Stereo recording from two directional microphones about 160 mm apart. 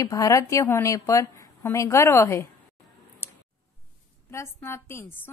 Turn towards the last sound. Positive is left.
turn(degrees=15)  # may be behind; listen again after turning